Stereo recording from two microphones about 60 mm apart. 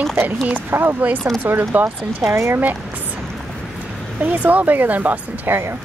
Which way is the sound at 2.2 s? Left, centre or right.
Right.